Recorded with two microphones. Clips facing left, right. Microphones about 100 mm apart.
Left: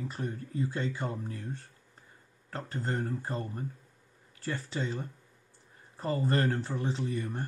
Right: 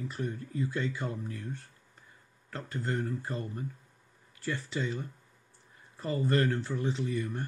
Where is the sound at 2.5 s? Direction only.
35° left (ahead or behind).